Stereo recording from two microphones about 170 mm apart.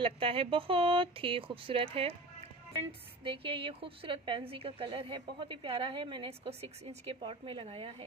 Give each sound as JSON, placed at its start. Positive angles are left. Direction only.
{"t": 0.0, "sound": "a woman's voice", "side_deg": -35}
{"t": 3.3, "sound": "a woman's voice", "side_deg": -30}